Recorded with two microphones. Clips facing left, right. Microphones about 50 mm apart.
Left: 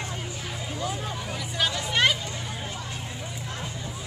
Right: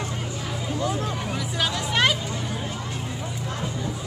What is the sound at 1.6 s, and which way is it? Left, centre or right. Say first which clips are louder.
Speech: right 1 dB; centre.